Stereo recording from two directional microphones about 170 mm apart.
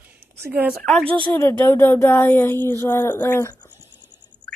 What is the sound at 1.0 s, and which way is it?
Speech, 30° right (ahead or behind).